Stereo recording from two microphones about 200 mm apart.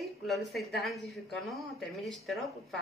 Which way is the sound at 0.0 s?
Centre (ahead or behind).